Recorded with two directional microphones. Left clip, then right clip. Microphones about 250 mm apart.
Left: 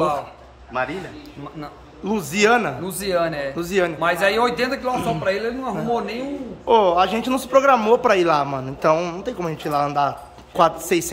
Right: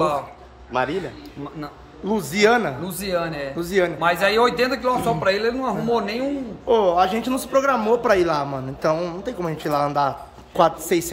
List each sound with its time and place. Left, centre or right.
0.7 s a man's voice: right
1.6 s a man's voice: centre